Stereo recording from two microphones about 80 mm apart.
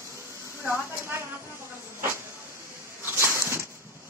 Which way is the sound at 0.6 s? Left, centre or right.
Right.